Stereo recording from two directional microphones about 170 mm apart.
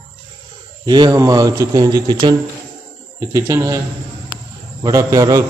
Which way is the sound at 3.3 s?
15° right (ahead or behind).